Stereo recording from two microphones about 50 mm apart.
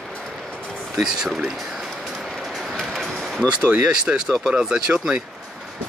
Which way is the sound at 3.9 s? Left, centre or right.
Centre.